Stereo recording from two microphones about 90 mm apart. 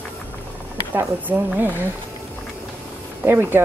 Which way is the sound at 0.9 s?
20° right (ahead or behind).